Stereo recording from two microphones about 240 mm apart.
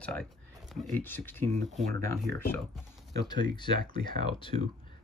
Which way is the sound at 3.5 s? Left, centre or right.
Centre.